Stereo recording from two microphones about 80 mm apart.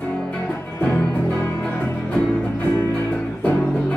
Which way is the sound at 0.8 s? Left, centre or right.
Centre.